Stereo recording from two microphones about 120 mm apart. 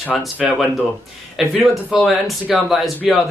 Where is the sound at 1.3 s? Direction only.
Centre (ahead or behind).